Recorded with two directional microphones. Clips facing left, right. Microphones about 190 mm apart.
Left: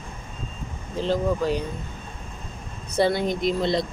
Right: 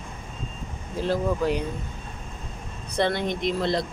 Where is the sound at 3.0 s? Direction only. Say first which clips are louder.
Left 3 dB; 5° left (ahead or behind).